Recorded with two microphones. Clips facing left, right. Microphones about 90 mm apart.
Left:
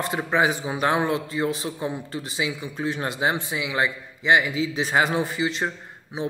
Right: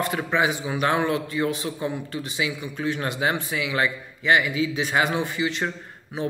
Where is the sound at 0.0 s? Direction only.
30° left (ahead or behind).